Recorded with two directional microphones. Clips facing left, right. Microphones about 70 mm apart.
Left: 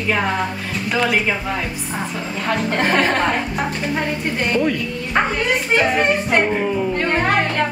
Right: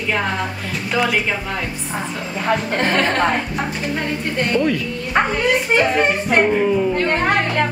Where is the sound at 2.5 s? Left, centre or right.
Centre.